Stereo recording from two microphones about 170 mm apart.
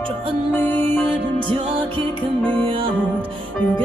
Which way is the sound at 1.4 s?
30° right (ahead or behind).